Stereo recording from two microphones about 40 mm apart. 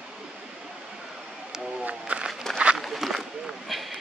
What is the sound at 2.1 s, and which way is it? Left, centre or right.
Walk, right.